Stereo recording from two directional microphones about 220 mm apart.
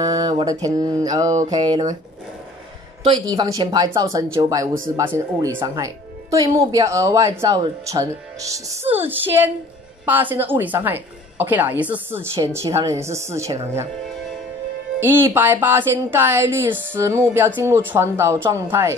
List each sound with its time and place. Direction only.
0.0 s mantra: 15° right (ahead or behind)
0.3 s a woman's voice: 20° right (ahead or behind)
3.1 s a woman's voice: 20° right (ahead or behind)
15.0 s a woman's voice: 10° right (ahead or behind)